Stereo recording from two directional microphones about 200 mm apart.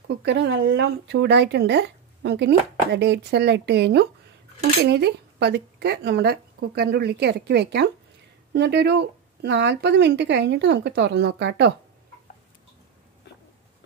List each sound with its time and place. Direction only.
0.1 s speech: 60° right (ahead or behind)